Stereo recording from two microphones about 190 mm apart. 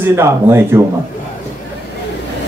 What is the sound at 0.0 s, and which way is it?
Speech, 15° right (ahead or behind).